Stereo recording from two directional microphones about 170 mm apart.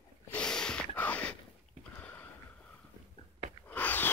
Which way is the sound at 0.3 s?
5° left (ahead or behind).